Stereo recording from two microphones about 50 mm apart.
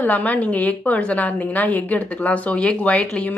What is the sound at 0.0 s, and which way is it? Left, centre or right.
A woman's voice, left.